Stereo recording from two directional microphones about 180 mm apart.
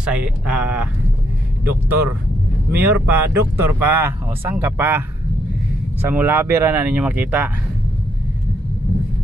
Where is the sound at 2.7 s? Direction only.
10° right (ahead or behind).